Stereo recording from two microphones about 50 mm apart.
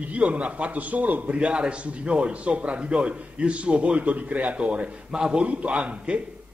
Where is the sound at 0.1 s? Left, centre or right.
Right.